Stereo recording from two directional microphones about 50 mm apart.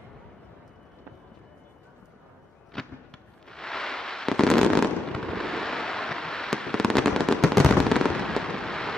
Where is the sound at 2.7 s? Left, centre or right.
Centre.